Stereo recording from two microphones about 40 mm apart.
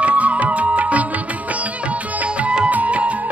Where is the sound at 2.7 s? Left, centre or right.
Right.